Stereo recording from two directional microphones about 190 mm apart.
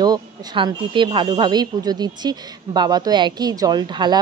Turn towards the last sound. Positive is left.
turn(degrees=-25)  # may be behind; listen again after turning